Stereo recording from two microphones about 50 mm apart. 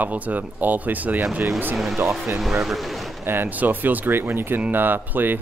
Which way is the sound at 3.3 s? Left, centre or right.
Right.